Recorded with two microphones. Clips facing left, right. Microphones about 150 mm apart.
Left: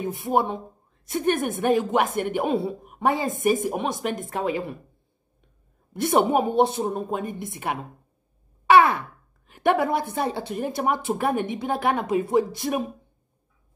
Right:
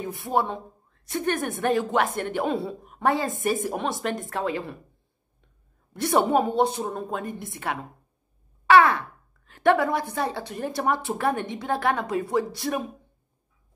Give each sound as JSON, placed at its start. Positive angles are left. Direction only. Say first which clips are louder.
{"t": 0.0, "sound": "a woman's voice", "louder": "left 2 dB", "side_deg": 20}
{"t": 3.8, "sound": "a woman's voice", "louder": "left 1 dB", "side_deg": 10}
{"t": 4.1, "sound": "a woman's voice", "louder": "left 1 dB", "side_deg": 20}
{"t": 5.9, "sound": "a woman's voice", "louder": "left 1 dB", "side_deg": 20}
{"t": 8.6, "sound": "wail", "louder": "left 1 dB", "side_deg": 15}
{"t": 9.5, "sound": "a woman's voice", "louder": "even", "side_deg": 15}